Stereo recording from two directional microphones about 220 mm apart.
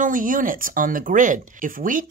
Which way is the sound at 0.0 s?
40° right (ahead or behind).